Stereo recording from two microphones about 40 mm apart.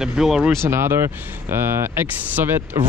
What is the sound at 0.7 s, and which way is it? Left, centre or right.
Speech, right.